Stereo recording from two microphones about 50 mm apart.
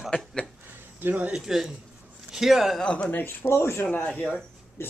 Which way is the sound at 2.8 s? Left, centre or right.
Left.